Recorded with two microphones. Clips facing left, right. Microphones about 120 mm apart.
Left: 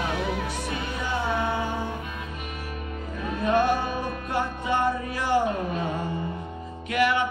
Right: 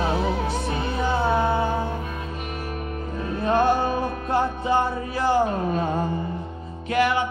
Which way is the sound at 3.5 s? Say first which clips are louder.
Right 2 dB; 30° right (ahead or behind).